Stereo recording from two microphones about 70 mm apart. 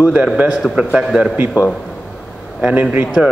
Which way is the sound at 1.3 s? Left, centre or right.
Right.